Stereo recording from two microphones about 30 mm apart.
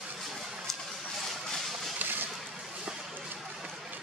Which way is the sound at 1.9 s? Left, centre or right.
Right.